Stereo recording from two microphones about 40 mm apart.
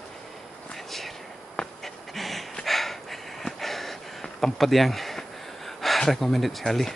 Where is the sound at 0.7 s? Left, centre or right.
Centre.